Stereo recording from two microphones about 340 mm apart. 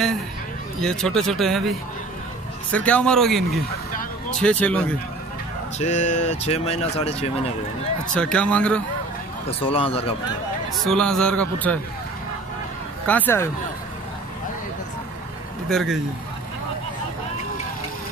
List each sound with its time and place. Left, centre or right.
0.7 s speech: centre
5.8 s speech: left
8.1 s speech: centre
9.6 s speech: centre
10.8 s speech: centre
13.0 s speech: centre
15.7 s speech: centre